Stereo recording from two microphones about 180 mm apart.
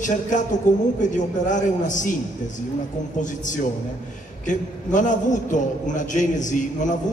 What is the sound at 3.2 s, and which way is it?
A man's voice, 45° left (ahead or behind).